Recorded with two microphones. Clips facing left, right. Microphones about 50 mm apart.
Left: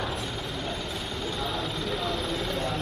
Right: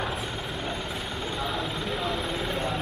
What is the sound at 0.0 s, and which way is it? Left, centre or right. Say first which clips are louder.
Vehicle: right 1 dB; centre.